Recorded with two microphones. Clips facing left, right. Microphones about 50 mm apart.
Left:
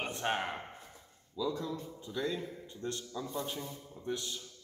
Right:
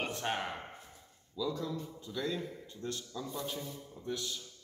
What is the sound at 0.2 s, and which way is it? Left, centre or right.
A man's voice, centre.